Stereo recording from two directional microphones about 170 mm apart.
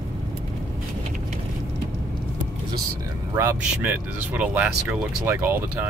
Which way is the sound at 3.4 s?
15° right (ahead or behind).